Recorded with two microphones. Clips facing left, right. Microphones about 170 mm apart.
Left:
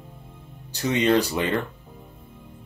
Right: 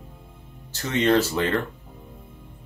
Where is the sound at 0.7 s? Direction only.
15° left (ahead or behind).